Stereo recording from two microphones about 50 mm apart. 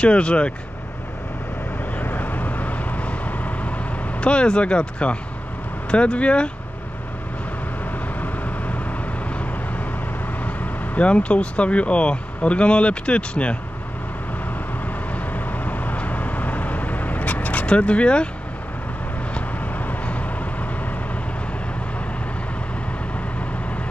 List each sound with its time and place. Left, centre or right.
0.0 s speech: left
2.0 s vehicle: left
5.9 s speech: left
8.2 s vehicle: left
11.0 s speech: left
15.3 s vehicle: left
17.6 s speech: left
19.3 s vehicle: left